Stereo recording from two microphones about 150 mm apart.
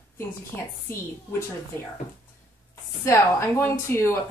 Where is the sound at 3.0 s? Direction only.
20° left (ahead or behind).